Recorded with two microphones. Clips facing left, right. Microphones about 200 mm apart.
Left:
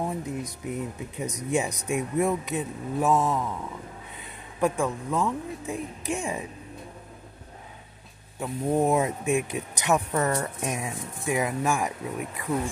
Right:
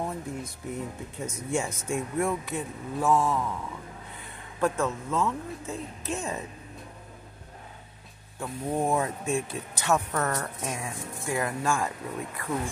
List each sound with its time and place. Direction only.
0.0 s speech: 15° left (ahead or behind)
4.6 s speech: 15° left (ahead or behind)
8.4 s speech: 20° left (ahead or behind)